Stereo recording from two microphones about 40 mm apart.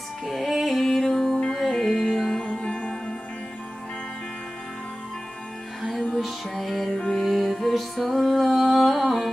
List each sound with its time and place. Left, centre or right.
0.3 s music: centre
2.4 s music: left
5.8 s music: centre